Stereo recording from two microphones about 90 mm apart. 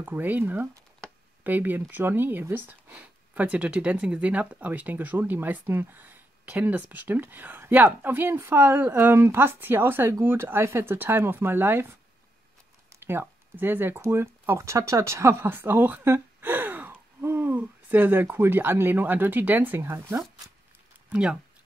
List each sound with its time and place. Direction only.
0.0 s speech: 20° right (ahead or behind)
21.1 s speech: 10° right (ahead or behind)